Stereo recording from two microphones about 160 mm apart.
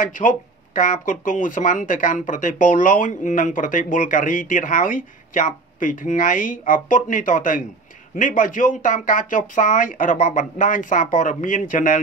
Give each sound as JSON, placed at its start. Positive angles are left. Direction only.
{"t": 0.0, "sound": "speech", "side_deg": 55}